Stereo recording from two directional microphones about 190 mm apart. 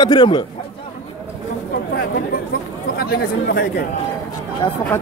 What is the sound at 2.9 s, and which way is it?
Speech, 55° left (ahead or behind).